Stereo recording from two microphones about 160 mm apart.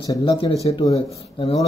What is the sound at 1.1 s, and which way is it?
Speech, 40° left (ahead or behind).